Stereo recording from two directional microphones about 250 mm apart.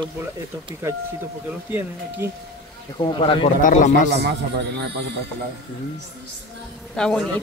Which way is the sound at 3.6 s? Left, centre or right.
Left.